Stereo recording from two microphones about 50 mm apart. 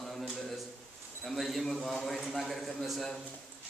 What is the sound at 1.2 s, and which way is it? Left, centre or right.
A man's voice, centre.